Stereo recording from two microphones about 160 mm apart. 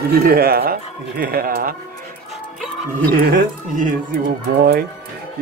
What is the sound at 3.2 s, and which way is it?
Speech, 55° right (ahead or behind).